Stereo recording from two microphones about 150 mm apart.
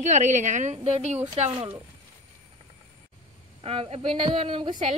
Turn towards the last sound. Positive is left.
turn(degrees=-35)  # may be behind; listen again after turning